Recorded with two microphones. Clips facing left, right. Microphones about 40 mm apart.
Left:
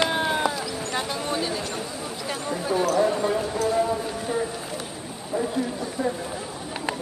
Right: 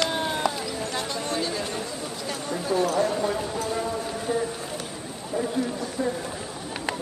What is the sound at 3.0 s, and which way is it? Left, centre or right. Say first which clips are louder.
Clip-clop: left 2 dB; centre.